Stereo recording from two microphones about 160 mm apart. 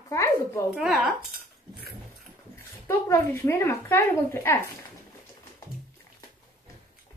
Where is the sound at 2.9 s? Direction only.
15° left (ahead or behind).